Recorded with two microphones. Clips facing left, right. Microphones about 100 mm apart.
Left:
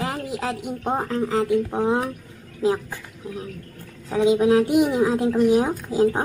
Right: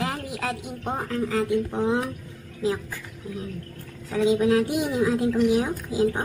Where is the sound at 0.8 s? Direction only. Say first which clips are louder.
Left 4 dB; 30° left (ahead or behind).